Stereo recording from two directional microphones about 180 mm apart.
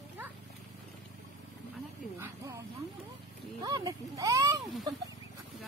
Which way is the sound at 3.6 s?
20° right (ahead or behind).